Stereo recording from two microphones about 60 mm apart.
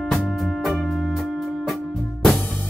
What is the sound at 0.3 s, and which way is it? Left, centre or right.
Music, centre.